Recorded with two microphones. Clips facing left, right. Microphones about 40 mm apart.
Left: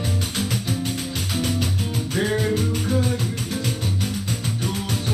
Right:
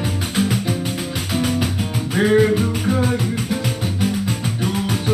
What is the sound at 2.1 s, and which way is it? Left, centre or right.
Music, right.